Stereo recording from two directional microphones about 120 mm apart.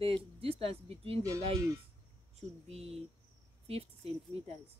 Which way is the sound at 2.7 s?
55° right (ahead or behind).